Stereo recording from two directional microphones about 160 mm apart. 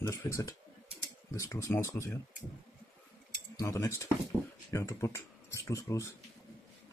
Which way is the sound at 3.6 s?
15° left (ahead or behind).